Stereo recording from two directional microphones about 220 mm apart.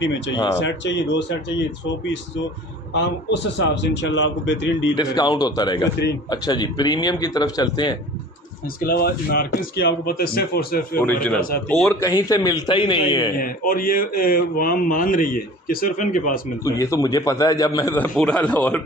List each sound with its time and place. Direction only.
0.0 s speech: 55° left (ahead or behind)
2.9 s speech: 50° left (ahead or behind)
4.9 s speech: 20° left (ahead or behind)
8.8 s speech: 45° left (ahead or behind)
11.0 s a man's voice: 5° left (ahead or behind)
12.0 s speech: 15° left (ahead or behind)
13.4 s speech: 40° left (ahead or behind)
16.6 s a man's voice: 15° left (ahead or behind)